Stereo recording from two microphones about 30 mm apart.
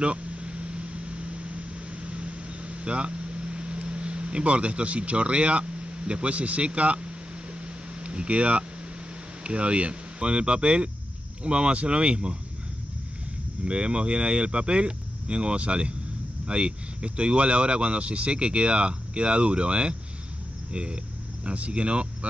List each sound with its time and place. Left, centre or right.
0.0 s vehicle: right
6.3 s speech: right
7.6 s a sound: right
9.4 s speech: right
13.7 s speech: right